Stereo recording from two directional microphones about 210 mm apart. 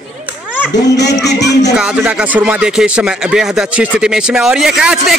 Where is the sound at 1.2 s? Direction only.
55° left (ahead or behind).